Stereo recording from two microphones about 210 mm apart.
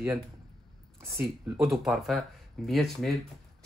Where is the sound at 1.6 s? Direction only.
Centre (ahead or behind).